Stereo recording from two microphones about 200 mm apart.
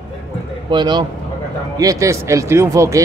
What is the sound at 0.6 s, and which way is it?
Speech, 20° right (ahead or behind).